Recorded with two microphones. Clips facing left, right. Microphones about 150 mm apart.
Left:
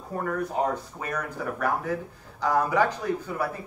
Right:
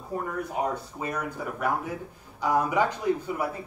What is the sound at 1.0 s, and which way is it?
A man's voice, 15° right (ahead or behind).